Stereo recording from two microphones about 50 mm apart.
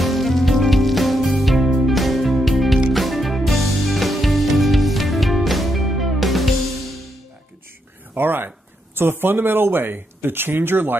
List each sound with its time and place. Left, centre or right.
0.0 s music: centre
8.1 s a sound: right
8.9 s speech: right